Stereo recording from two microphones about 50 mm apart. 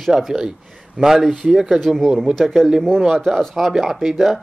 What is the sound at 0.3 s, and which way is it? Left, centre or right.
A man's voice, centre.